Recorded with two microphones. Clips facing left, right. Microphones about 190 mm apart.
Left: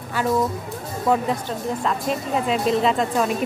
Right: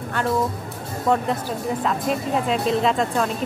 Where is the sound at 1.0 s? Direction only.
5° left (ahead or behind).